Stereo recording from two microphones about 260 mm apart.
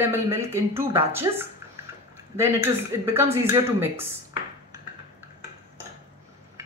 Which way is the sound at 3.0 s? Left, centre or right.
Centre.